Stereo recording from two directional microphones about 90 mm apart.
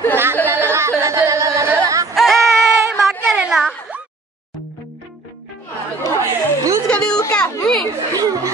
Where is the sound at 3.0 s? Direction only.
Centre (ahead or behind).